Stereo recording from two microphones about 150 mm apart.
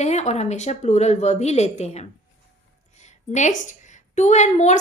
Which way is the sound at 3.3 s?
55° left (ahead or behind).